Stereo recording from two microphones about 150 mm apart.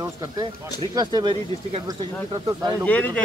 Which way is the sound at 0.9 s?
30° right (ahead or behind).